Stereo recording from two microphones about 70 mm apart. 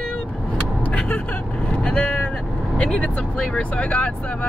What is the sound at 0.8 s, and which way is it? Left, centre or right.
Vehicle, centre.